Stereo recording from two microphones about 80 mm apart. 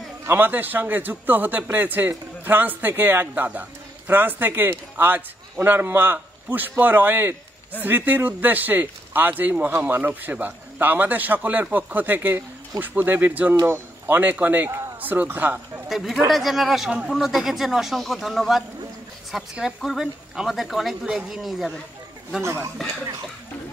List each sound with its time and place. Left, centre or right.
0.2 s a man's voice: right
15.9 s speech: centre
22.4 s speech: right